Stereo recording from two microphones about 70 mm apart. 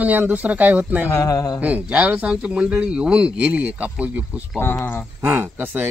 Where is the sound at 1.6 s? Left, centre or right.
Centre.